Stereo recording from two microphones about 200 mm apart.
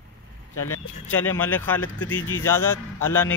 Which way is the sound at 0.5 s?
90° left.